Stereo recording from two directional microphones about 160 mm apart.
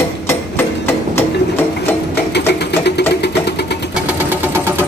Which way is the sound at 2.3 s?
90° left.